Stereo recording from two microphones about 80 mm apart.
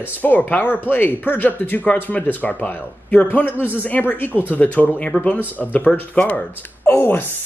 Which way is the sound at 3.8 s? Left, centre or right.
Left.